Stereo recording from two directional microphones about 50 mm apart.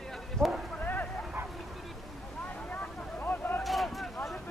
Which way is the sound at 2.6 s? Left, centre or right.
Left.